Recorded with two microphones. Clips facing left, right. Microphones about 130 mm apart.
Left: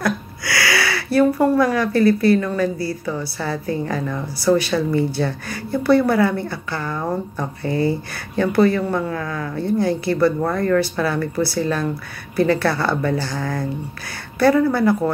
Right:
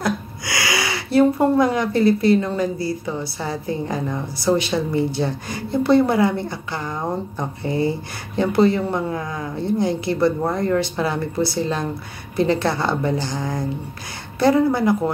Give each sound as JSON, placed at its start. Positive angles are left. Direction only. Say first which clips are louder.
{"t": 0.0, "sound": "speech", "louder": "left 1 dB", "side_deg": -20}